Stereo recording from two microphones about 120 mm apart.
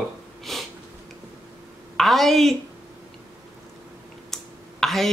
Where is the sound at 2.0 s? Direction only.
Centre (ahead or behind).